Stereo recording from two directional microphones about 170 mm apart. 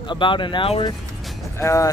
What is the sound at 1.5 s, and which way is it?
Speech, 20° left (ahead or behind).